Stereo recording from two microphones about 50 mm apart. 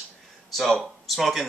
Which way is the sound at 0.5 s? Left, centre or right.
Centre.